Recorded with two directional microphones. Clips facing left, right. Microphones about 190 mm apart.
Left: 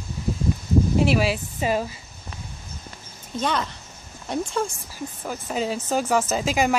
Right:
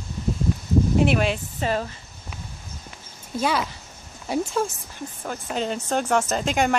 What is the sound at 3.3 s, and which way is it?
Speech, 5° right (ahead or behind).